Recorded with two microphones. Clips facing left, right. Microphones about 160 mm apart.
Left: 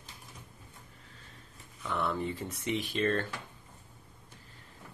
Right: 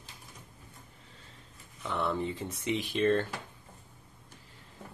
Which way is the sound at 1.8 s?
20° right (ahead or behind).